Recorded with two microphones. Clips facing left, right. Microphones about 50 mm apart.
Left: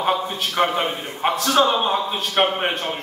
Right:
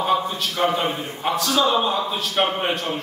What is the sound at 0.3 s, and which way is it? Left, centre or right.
A man's voice, left.